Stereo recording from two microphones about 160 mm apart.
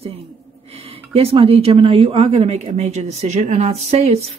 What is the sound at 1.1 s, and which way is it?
Speech, 35° right (ahead or behind).